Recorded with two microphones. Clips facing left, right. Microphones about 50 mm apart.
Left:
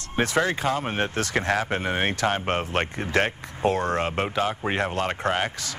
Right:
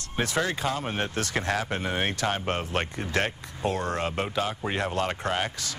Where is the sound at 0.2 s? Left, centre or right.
Left.